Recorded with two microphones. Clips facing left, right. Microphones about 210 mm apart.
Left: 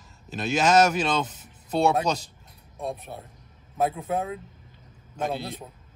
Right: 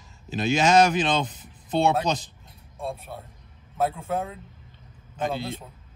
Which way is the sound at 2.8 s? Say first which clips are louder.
Even; 15° left (ahead or behind).